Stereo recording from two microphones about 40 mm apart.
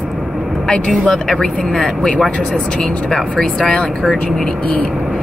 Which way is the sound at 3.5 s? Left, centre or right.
Centre.